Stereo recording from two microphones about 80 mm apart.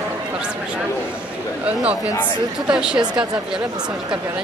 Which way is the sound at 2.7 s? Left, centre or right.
Centre.